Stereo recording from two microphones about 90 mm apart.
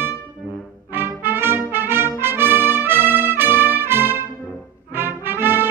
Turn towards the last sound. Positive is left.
turn(degrees=-25)  # may be behind; listen again after turning